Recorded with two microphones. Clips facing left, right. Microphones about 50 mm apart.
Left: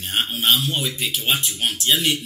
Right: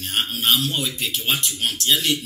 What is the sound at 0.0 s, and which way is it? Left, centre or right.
A man's voice, left.